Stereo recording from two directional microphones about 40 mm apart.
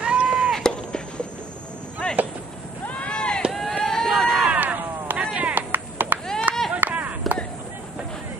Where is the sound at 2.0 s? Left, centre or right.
Left.